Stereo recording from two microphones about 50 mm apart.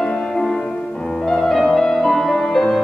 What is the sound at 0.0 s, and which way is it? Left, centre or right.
Music, centre.